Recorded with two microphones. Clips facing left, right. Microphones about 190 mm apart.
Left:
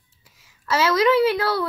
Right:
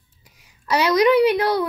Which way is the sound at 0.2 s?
20° right (ahead or behind).